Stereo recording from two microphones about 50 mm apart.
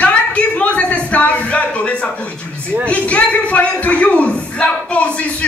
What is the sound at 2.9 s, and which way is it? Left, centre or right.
Speech, left.